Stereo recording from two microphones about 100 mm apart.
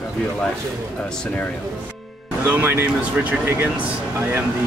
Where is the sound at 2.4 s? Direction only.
20° right (ahead or behind).